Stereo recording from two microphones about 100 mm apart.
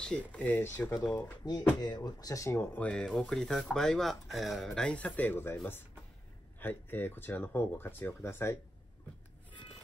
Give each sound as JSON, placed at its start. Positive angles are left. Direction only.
{"t": 0.0, "sound": "speech", "side_deg": 10}
{"t": 1.1, "sound": "speech", "side_deg": 40}
{"t": 6.6, "sound": "speech", "side_deg": 20}